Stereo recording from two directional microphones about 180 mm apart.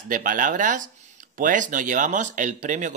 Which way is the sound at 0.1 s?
50° right (ahead or behind).